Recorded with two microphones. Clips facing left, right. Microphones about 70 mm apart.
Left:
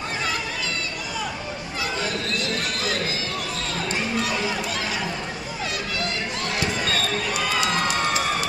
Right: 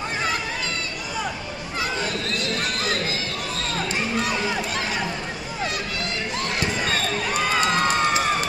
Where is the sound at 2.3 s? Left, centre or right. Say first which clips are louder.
Right 1 dB; right.